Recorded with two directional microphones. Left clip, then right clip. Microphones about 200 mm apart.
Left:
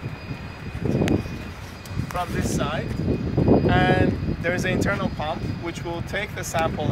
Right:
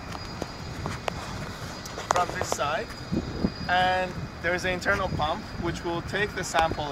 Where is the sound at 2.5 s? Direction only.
20° left (ahead or behind).